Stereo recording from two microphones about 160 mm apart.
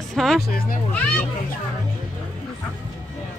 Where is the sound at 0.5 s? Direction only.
65° left (ahead or behind).